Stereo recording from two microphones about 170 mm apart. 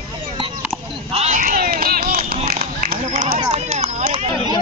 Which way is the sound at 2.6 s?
55° right (ahead or behind).